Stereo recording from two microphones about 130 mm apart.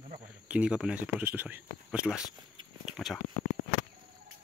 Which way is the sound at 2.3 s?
35° right (ahead or behind).